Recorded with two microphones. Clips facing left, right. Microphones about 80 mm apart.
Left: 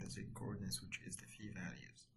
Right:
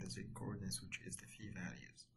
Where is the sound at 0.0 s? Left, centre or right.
Centre.